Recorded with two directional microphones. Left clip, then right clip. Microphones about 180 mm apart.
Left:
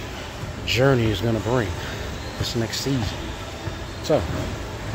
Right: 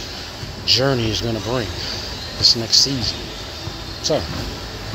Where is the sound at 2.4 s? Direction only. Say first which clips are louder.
Right 13 dB; 40° left (ahead or behind).